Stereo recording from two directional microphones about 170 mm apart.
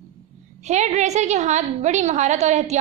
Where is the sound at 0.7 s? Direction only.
45° right (ahead or behind).